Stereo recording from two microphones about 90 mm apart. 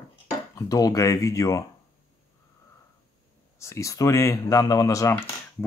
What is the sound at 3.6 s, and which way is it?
Speech, 35° left (ahead or behind).